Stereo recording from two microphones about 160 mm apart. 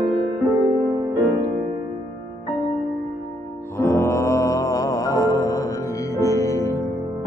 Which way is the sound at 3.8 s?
15° left (ahead or behind).